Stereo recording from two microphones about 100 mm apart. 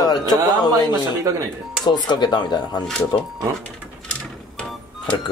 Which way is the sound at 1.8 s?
45° left (ahead or behind).